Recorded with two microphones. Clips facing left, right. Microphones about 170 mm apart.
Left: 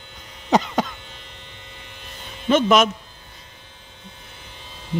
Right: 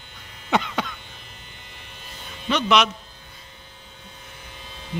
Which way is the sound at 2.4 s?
45° left (ahead or behind).